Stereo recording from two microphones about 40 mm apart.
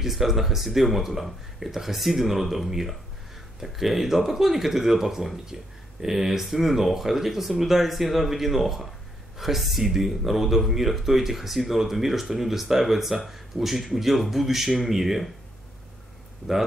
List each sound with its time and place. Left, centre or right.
0.0 s speech: centre